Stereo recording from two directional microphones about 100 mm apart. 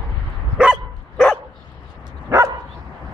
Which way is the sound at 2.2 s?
30° right (ahead or behind).